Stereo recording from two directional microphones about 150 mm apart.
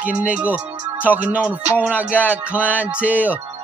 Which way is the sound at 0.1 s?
55° right (ahead or behind).